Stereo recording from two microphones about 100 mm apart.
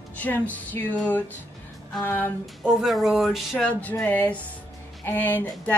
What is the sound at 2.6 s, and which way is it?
A woman's voice, 5° right (ahead or behind).